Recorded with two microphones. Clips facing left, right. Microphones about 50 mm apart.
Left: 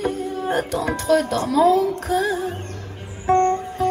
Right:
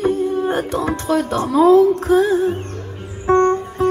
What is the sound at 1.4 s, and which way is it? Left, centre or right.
Speech, centre.